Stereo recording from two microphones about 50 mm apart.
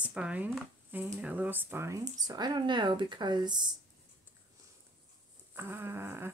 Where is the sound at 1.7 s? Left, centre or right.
Right.